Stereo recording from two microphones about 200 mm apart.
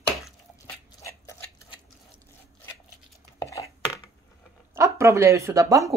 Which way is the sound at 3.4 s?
15° left (ahead or behind).